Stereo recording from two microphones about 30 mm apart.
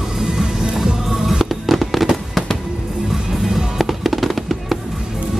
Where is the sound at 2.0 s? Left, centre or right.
Centre.